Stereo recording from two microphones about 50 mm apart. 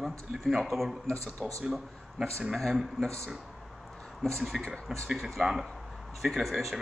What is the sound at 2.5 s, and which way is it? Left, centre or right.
Speech, centre.